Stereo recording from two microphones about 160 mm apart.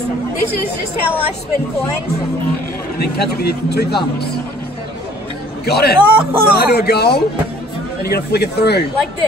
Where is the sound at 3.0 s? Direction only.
80° left.